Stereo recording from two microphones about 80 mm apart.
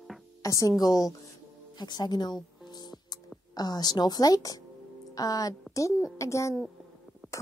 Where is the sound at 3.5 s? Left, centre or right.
Left.